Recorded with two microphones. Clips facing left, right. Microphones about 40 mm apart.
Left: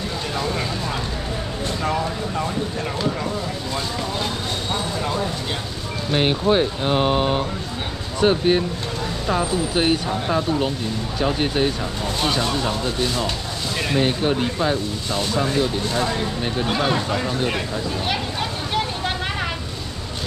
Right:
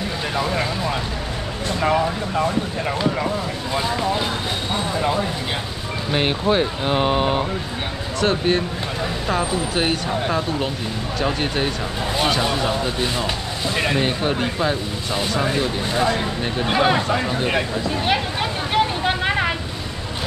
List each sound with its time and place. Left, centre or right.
0.4 s speech: centre
6.1 s speech: centre
9.4 s speech: centre
14.0 s speech: centre